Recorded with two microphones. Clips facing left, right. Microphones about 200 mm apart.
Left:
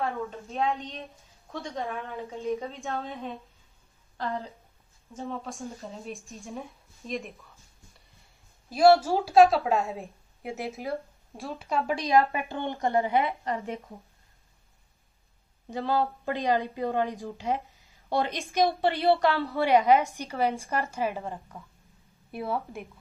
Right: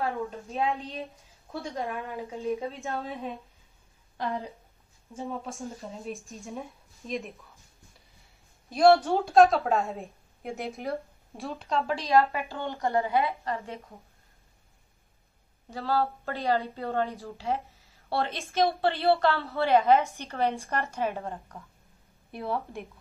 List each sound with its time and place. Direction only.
0.3 s a woman's voice: centre (ahead or behind)
4.2 s a woman's voice: 15° right (ahead or behind)
8.6 s a woman's voice: centre (ahead or behind)
11.8 s a woman's voice: 15° left (ahead or behind)
15.7 s a woman's voice: 20° left (ahead or behind); by 22.8 s 5° left (ahead or behind)